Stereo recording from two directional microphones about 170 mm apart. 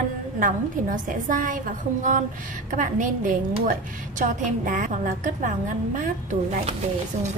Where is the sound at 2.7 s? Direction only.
50° right (ahead or behind).